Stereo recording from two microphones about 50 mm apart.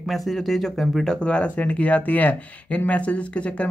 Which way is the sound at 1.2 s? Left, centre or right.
Left.